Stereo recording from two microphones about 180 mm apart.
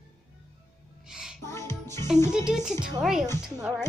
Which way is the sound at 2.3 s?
5° right (ahead or behind).